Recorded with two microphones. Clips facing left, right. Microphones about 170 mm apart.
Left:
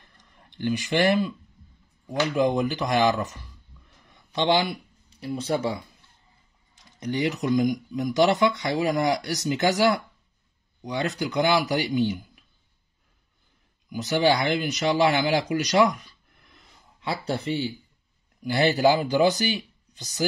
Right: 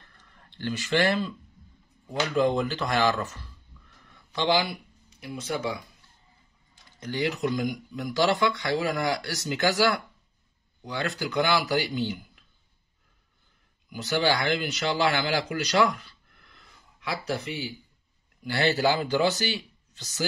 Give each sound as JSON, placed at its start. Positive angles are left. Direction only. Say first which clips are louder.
{"t": 0.2, "sound": "speech", "louder": "left 5 dB", "side_deg": 15}
{"t": 2.3, "sound": "speech", "louder": "even", "side_deg": 15}
{"t": 4.1, "sound": "a sound", "louder": "left 2 dB", "side_deg": 20}
{"t": 5.2, "sound": "speech", "louder": "left 5 dB", "side_deg": 30}
{"t": 7.0, "sound": "speech", "louder": "left 2 dB", "side_deg": 20}
{"t": 13.9, "sound": "speech", "louder": "left 4 dB", "side_deg": 15}
{"t": 15.5, "sound": "a sound", "louder": "left 2 dB", "side_deg": 20}
{"t": 18.4, "sound": "speech", "louder": "left 4 dB", "side_deg": 20}